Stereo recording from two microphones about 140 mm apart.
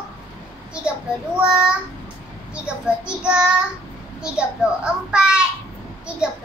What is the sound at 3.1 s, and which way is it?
A child's voice, 5° right (ahead or behind).